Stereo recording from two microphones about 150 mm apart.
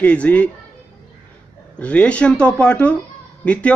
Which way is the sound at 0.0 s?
10° left (ahead or behind).